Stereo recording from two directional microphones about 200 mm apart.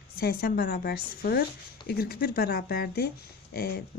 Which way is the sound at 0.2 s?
50° left (ahead or behind).